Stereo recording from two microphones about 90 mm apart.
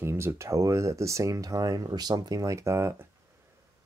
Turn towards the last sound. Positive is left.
turn(degrees=-30)  # may be behind; listen again after turning